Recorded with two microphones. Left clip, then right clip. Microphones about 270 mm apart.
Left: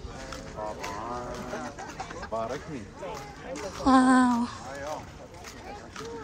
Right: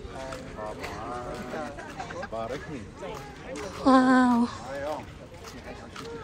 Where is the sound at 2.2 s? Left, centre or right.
Left.